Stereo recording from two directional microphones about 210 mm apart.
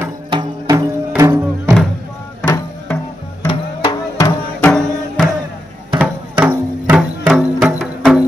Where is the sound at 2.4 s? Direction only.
15° left (ahead or behind).